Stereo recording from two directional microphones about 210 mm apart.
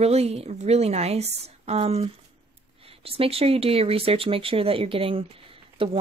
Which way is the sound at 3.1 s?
25° right (ahead or behind).